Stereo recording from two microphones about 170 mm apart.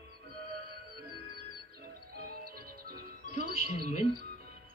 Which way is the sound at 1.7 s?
65° right (ahead or behind).